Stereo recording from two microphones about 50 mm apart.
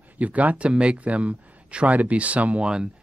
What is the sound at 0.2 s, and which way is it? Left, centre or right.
Speech, right.